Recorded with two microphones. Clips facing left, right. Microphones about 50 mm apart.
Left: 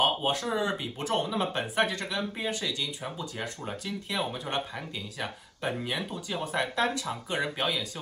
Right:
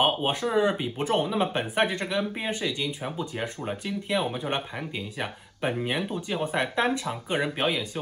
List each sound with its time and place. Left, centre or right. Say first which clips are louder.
0.0 s speech: right 2 dB; right